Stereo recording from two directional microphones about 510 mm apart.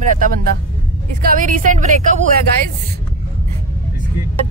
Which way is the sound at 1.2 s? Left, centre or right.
Centre.